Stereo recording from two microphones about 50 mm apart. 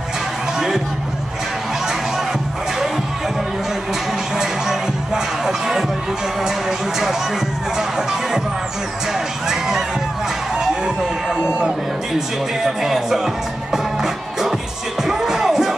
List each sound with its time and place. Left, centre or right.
4.4 s music: centre
7.0 s music: centre
9.5 s a sound: centre
12.6 s music: centre